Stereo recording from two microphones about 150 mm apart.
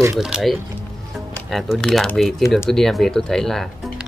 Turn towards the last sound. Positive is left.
turn(degrees=0)  # may be behind; listen again after turning